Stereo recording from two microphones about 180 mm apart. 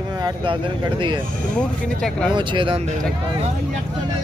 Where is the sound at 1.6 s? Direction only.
5° left (ahead or behind).